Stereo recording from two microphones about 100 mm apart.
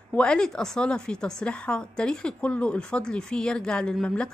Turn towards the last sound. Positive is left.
turn(degrees=5)  # may be behind; listen again after turning